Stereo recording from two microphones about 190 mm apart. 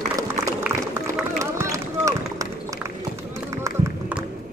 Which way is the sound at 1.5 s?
15° right (ahead or behind).